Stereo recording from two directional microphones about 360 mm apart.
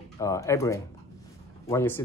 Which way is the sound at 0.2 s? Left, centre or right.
Centre.